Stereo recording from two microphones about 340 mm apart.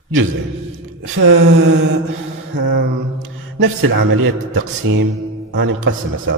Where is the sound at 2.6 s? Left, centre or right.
Right.